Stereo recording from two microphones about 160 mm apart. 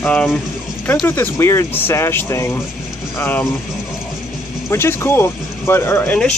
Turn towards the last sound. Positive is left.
turn(degrees=10)  # may be behind; listen again after turning